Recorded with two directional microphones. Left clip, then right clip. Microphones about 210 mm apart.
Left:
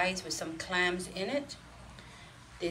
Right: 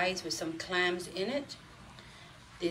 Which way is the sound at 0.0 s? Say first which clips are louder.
Even; 10° right (ahead or behind).